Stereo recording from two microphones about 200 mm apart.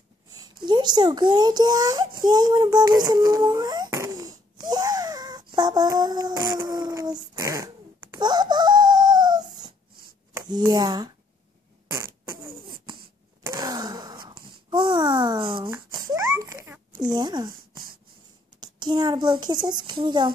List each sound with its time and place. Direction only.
0.6 s a child's voice: 20° right (ahead or behind)
8.2 s wail: 20° right (ahead or behind)
10.3 s speech: 20° right (ahead or behind)
11.9 s fart: 15° right (ahead or behind)
13.5 s a sound: 20° right (ahead or behind)
18.6 s a child's voice: 20° right (ahead or behind)